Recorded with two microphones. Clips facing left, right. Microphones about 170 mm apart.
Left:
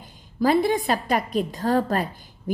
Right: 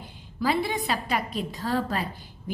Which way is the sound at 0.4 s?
45° left (ahead or behind).